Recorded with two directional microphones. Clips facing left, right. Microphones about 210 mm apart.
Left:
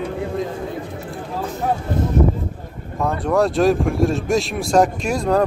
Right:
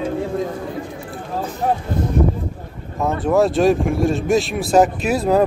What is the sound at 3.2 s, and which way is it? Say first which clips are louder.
Speech: right 1 dB; centre (ahead or behind).